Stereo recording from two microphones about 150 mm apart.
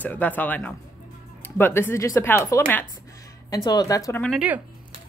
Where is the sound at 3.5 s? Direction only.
25° left (ahead or behind).